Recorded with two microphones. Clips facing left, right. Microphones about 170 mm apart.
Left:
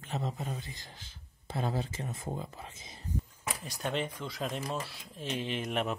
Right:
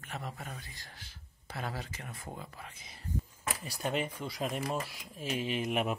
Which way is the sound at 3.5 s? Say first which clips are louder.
Even; 5° right (ahead or behind).